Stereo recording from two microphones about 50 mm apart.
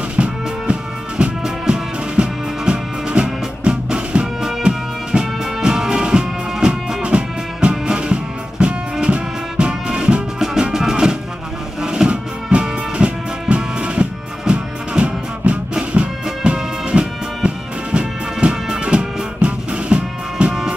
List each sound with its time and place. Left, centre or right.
0.1 s music: right
4.4 s music: centre